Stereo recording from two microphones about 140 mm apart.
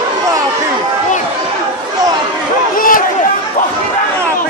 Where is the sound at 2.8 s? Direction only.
85° left.